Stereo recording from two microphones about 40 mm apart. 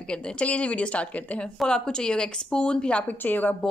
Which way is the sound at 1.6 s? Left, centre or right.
Centre.